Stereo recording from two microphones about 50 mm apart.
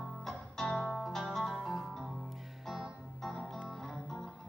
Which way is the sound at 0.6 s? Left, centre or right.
Centre.